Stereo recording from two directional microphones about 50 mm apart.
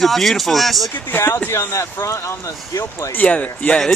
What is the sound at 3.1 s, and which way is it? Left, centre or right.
Speech, left.